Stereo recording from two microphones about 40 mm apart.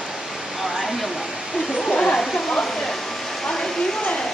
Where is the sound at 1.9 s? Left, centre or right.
Left.